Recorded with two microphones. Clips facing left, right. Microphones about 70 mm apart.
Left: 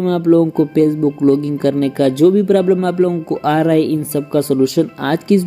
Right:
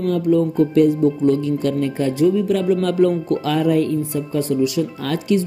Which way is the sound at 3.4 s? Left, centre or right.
Left.